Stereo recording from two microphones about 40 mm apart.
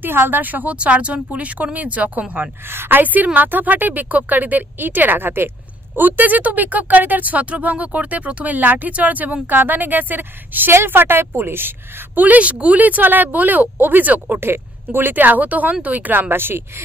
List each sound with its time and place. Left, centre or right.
0.0 s speech: right
0.7 s speech: right
2.7 s a woman's voice: right
3.0 s speech: right
5.9 s speech: right
10.9 s speech: right
12.2 s speech: right
14.4 s speech: right